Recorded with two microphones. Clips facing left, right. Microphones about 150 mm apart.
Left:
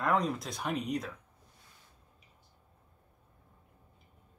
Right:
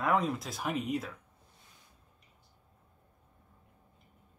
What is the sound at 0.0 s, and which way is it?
Speech, centre (ahead or behind).